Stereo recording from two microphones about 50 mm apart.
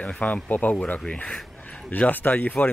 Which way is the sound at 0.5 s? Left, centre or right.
Left.